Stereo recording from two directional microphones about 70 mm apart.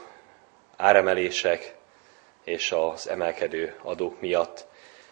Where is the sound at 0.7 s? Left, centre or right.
Right.